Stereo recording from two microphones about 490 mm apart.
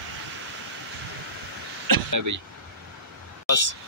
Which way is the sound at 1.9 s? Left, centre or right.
Right.